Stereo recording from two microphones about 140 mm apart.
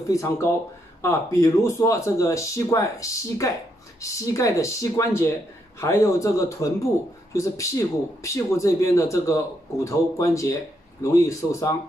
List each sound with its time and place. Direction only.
0.1 s speech: 20° left (ahead or behind)